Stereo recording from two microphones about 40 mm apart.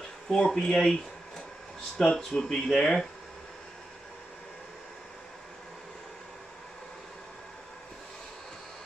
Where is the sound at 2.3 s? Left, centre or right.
Centre.